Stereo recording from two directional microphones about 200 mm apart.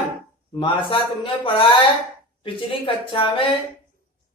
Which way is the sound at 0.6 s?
25° left (ahead or behind).